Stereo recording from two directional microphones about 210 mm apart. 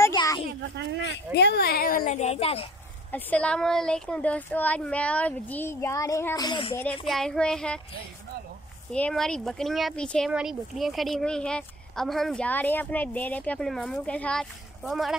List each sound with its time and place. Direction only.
0.0 s a sound: 15° left (ahead or behind)
0.5 s a child's voice: 50° right (ahead or behind)
1.3 s a child's voice: 50° left (ahead or behind); by 2.6 s 30° left (ahead or behind)
3.1 s speech: 5° left (ahead or behind)
6.8 s speech: 5° left (ahead or behind)
8.9 s speech: 5° left (ahead or behind)